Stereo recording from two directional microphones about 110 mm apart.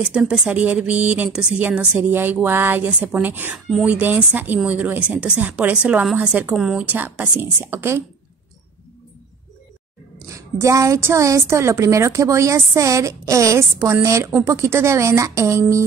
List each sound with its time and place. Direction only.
0.1 s a woman's voice: 5° right (ahead or behind)
6.5 s a woman's voice: 5° right (ahead or behind)
6.8 s a woman's voice: 15° right (ahead or behind)
10.2 s a woman's voice: 30° right (ahead or behind)